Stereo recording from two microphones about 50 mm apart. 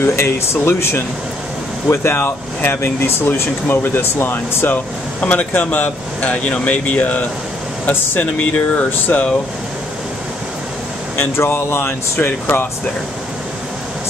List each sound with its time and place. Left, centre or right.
0.0 s speech: left
5.2 s speech: left
9.1 s speech: left
11.3 s speech: left